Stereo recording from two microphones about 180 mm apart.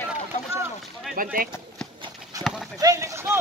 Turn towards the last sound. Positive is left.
turn(degrees=-15)  # may be behind; listen again after turning